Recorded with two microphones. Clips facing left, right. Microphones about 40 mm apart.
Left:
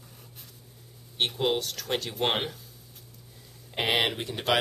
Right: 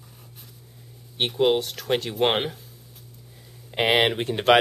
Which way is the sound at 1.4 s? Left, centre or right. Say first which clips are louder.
Right 10 dB; centre.